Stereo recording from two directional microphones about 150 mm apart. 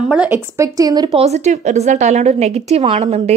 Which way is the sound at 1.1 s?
45° right (ahead or behind).